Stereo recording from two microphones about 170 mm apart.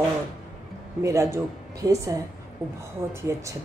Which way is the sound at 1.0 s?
20° right (ahead or behind).